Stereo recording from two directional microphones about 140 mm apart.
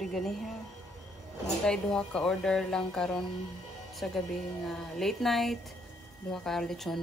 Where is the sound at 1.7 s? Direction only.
5° left (ahead or behind).